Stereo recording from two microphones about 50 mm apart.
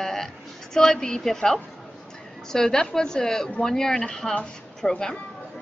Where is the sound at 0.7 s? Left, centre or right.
Centre.